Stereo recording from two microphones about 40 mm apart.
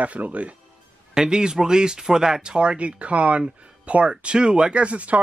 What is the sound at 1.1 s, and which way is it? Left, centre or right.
Speech, centre.